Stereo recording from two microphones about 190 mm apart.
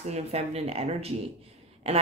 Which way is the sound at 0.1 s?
35° right (ahead or behind).